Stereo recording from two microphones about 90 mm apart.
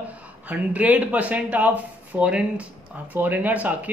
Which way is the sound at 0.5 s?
15° right (ahead or behind).